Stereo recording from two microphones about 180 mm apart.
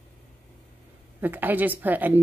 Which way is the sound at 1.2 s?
10° right (ahead or behind).